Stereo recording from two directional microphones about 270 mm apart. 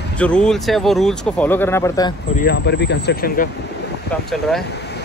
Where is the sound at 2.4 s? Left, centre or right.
Left.